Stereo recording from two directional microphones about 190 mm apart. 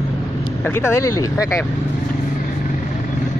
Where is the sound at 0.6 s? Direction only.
15° left (ahead or behind).